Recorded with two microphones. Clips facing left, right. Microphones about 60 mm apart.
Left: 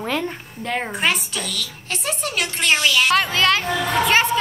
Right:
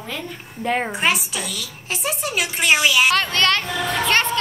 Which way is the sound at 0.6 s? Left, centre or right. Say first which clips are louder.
Right 2 dB; centre.